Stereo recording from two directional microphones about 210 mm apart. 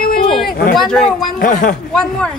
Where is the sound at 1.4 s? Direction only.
40° left (ahead or behind).